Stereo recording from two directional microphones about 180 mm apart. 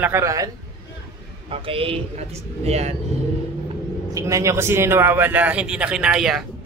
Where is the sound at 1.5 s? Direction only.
30° right (ahead or behind).